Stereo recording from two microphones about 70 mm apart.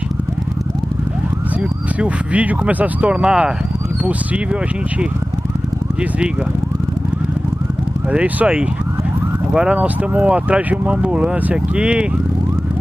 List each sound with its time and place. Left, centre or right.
2.0 s speech: centre
8.1 s speech: centre